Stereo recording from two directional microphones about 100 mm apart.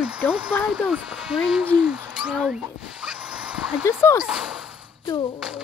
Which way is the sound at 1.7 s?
10° right (ahead or behind).